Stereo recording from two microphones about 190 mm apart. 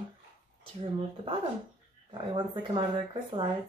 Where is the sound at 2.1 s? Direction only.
25° right (ahead or behind).